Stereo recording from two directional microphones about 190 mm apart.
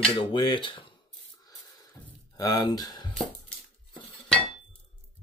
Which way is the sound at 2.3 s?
15° left (ahead or behind).